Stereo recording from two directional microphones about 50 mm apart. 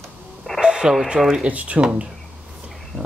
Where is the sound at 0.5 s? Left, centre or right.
Centre.